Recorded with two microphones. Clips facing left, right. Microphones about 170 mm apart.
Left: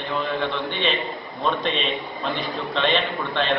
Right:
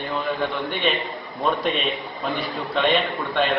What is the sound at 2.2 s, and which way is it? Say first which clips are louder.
Speech: right 1 dB; centre (ahead or behind).